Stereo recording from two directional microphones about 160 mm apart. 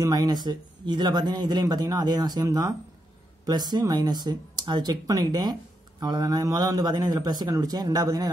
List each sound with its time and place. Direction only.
0.0 s speech: 25° right (ahead or behind)